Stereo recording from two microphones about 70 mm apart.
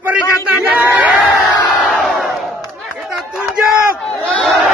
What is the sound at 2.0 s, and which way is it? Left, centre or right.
Crowd, centre.